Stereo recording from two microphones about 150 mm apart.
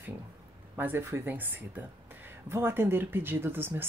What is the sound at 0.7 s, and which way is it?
Speech, 15° right (ahead or behind).